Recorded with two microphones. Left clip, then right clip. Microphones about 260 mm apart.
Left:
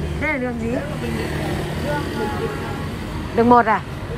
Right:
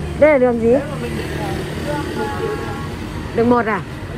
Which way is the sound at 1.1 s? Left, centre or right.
Left.